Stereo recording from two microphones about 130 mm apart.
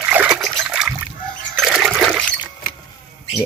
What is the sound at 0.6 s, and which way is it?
Splash, 5° right (ahead or behind).